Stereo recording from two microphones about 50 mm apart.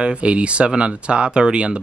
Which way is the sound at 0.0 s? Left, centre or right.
Right.